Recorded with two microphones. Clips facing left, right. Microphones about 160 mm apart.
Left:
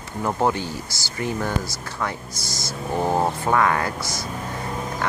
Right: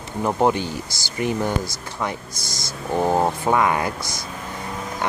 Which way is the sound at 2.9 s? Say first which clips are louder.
Right 2 dB; 15° right (ahead or behind).